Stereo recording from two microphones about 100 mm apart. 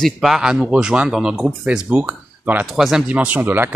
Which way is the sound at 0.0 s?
5° right (ahead or behind).